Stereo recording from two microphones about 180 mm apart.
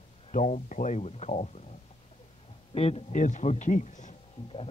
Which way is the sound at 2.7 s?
35° left (ahead or behind).